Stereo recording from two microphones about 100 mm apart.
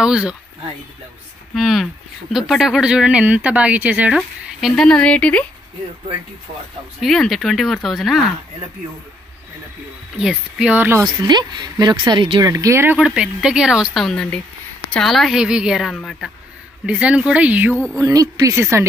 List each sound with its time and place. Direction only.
0.0 s speech: 10° right (ahead or behind)
1.5 s speech: centre (ahead or behind)
4.6 s speech: 5° right (ahead or behind)
4.8 s speech: 10° left (ahead or behind)
7.0 s speech: centre (ahead or behind)
10.1 s speech: 10° right (ahead or behind)
10.8 s a woman's voice: 25° right (ahead or behind)
11.2 s speech: 45° right (ahead or behind)
12.4 s speech: 35° right (ahead or behind)
13.0 s speech: 10° right (ahead or behind)
14.0 s speech: 5° left (ahead or behind); by 17.7 s 15° right (ahead or behind)
17.9 s speech: 35° right (ahead or behind)